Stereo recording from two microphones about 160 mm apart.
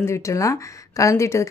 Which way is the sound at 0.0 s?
20° left (ahead or behind).